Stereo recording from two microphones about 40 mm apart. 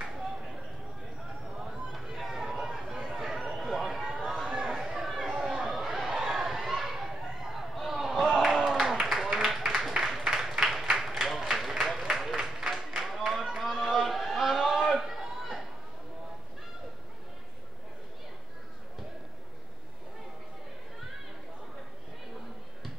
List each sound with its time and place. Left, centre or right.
1.9 s chatter: centre
4.5 s chatter: right
5.4 s a sound: centre
13.8 s chatter: centre